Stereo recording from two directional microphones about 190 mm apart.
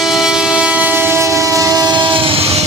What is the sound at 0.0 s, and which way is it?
Train, centre (ahead or behind).